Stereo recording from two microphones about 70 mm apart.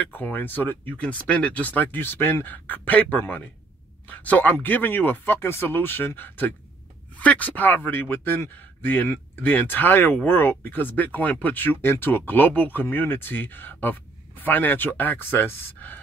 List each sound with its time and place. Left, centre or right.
0.0 s speech: left